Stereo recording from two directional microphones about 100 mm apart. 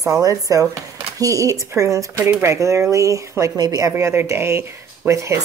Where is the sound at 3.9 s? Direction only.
25° right (ahead or behind).